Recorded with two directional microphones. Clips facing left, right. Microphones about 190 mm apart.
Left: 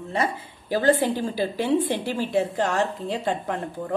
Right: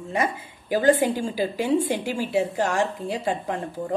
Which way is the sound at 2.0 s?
10° right (ahead or behind).